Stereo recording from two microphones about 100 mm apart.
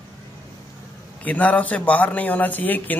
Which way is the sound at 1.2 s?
15° left (ahead or behind).